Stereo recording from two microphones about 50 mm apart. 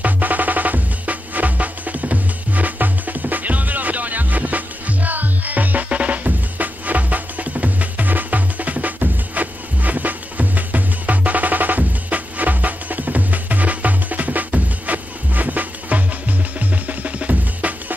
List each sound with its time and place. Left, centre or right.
0.0 s music: right